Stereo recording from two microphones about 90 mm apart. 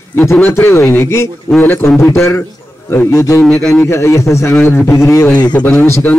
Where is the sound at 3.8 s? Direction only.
30° left (ahead or behind).